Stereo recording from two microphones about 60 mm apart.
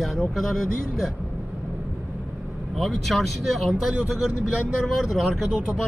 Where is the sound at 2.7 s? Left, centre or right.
Centre.